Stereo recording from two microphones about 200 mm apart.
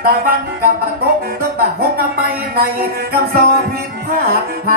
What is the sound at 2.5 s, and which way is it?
Music, 50° right (ahead or behind).